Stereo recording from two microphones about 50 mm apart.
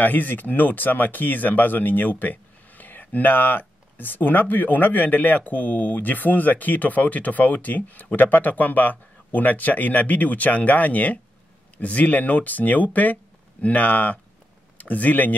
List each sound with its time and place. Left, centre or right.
0.0 s speech: left